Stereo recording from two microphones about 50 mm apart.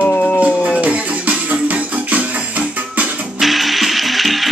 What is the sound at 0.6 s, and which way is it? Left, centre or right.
Music, right.